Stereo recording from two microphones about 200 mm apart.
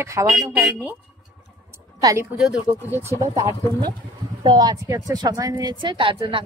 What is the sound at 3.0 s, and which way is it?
Speech, 15° right (ahead or behind).